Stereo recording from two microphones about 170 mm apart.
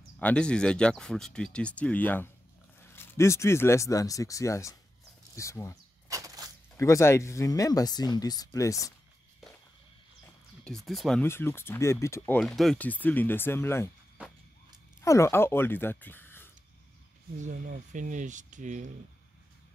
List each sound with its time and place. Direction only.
0.2 s speech: 5° left (ahead or behind)
6.0 s a sound: 20° right (ahead or behind)
6.8 s speech: 15° left (ahead or behind)
10.9 s speech: centre (ahead or behind)
11.2 s speech: 15° left (ahead or behind)
12.4 s speech: centre (ahead or behind)
14.2 s a sound: 5° right (ahead or behind)
15.0 s speech: 15° left (ahead or behind)
17.4 s speech: 50° right (ahead or behind)